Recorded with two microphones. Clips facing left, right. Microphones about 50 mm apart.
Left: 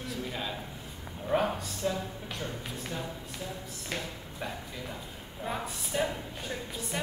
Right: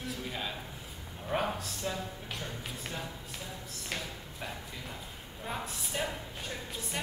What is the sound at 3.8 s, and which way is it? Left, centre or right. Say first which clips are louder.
Speech: left 2 dB; centre.